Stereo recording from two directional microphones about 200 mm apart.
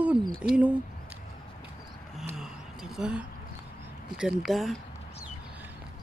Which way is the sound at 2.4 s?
Centre (ahead or behind).